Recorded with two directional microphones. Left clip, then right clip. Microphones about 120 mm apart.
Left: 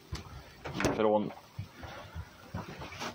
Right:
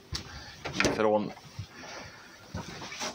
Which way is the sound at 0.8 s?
10° right (ahead or behind).